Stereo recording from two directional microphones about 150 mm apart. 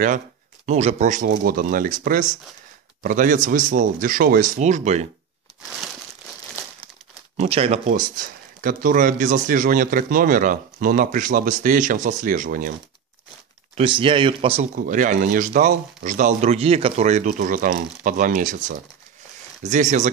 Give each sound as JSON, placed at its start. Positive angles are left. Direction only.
{"t": 0.7, "sound": "speech", "side_deg": -50}
{"t": 4.6, "sound": "speech", "side_deg": -50}
{"t": 7.3, "sound": "speech", "side_deg": -40}
{"t": 7.9, "sound": "speech", "side_deg": -65}
{"t": 13.7, "sound": "speech", "side_deg": -35}
{"t": 14.6, "sound": "speech", "side_deg": -60}
{"t": 17.3, "sound": "speech", "side_deg": -65}